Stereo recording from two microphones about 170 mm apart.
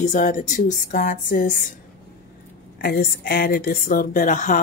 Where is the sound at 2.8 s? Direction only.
60° left (ahead or behind).